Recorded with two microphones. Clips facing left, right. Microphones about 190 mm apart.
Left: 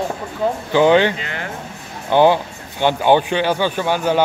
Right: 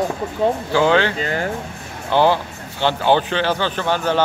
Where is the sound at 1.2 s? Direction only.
40° right (ahead or behind).